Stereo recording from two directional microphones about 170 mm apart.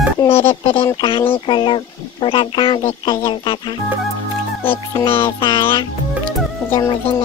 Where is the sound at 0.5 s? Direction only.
35° left (ahead or behind).